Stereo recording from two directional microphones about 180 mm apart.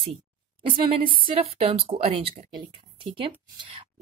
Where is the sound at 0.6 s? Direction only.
30° right (ahead or behind).